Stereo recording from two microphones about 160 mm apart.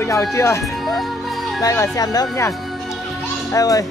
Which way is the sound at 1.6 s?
20° left (ahead or behind).